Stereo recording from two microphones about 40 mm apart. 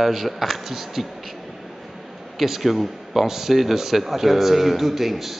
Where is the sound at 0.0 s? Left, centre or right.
Centre.